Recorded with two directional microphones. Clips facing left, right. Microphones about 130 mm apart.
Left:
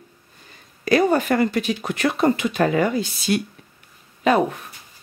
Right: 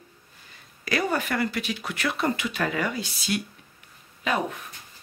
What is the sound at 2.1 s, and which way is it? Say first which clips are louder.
Speech: left 9 dB; 30° left (ahead or behind).